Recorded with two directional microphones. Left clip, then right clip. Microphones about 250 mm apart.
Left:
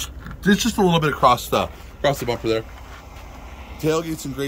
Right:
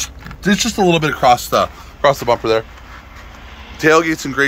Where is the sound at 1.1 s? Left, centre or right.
Centre.